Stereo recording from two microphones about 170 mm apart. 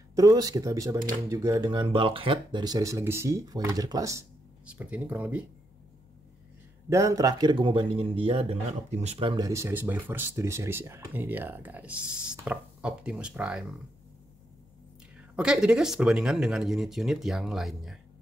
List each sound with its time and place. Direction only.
0.1 s speech: 20° right (ahead or behind)
4.6 s speech: 10° right (ahead or behind)
6.9 s speech: 20° right (ahead or behind)
9.5 s speech: 15° right (ahead or behind)
15.3 s speech: 5° right (ahead or behind)